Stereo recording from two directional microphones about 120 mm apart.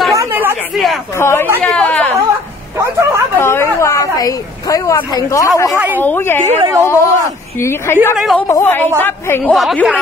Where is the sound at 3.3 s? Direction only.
20° left (ahead or behind).